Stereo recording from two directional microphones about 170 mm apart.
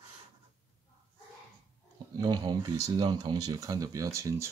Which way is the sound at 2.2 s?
25° right (ahead or behind).